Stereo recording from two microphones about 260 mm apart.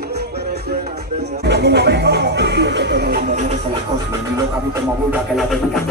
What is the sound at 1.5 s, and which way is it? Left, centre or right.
Speech, right.